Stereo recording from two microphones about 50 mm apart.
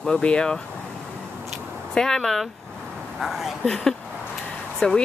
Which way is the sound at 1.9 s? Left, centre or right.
Centre.